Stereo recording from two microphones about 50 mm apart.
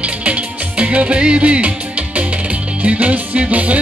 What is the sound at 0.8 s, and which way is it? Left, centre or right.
Music, right.